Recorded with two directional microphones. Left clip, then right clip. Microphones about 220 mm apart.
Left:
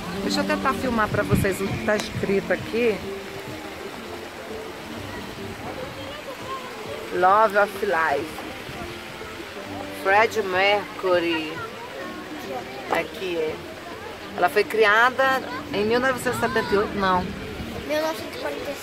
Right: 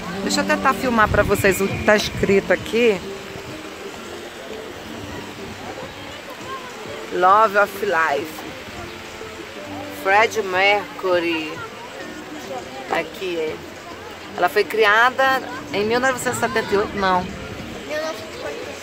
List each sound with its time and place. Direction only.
0.3 s speech: 25° right (ahead or behind)
7.2 s speech: 10° right (ahead or behind)
10.0 s speech: 10° right (ahead or behind)
14.4 s speech: 5° right (ahead or behind)